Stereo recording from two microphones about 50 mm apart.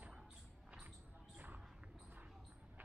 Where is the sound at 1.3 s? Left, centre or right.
Right.